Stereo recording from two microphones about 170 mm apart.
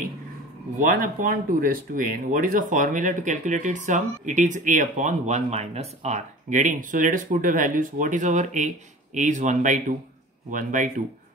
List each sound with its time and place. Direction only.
0.7 s speech: 50° right (ahead or behind)